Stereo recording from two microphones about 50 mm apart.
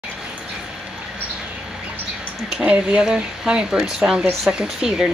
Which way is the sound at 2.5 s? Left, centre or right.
Centre.